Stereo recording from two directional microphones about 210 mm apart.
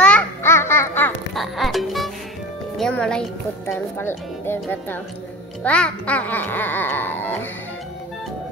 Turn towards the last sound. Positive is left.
turn(degrees=10)  # may be behind; listen again after turning